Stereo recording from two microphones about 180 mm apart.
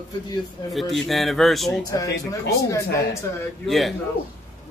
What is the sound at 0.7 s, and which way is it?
A man's voice, centre (ahead or behind).